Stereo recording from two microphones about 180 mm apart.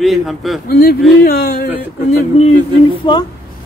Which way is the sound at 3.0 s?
25° left (ahead or behind).